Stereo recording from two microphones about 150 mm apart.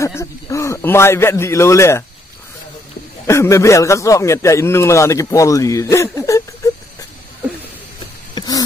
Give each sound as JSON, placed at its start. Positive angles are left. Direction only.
{"t": 0.0, "sound": "a man's voice", "side_deg": 20}
{"t": 3.3, "sound": "a man's voice", "side_deg": 20}
{"t": 8.4, "sound": "a sound", "side_deg": 25}